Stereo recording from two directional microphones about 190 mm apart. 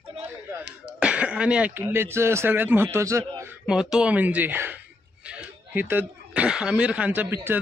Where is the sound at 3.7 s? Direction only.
5° right (ahead or behind).